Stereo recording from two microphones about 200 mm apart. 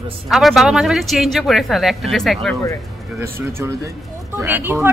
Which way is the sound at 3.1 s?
10° right (ahead or behind).